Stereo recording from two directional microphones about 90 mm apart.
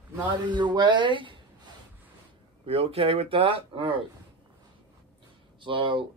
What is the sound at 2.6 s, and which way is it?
Speech, 90° right.